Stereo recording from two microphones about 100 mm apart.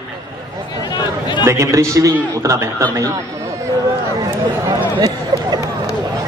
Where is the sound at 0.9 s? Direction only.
45° left (ahead or behind).